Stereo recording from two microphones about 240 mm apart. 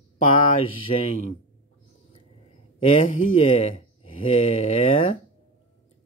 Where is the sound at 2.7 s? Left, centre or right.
Left.